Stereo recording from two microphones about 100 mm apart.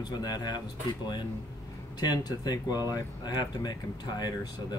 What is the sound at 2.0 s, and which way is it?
Speech, 40° left (ahead or behind).